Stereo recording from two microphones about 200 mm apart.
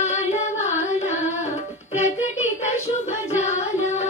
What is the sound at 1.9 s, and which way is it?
Child singing, 35° left (ahead or behind).